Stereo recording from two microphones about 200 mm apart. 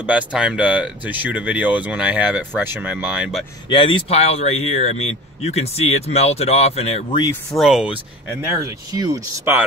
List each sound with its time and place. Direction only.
0.0 s speech: 5° right (ahead or behind)
3.6 s speech: 25° left (ahead or behind)
7.5 s speech: centre (ahead or behind)
8.6 s speech: 15° right (ahead or behind)